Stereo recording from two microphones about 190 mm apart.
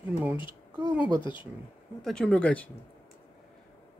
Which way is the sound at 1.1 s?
25° left (ahead or behind).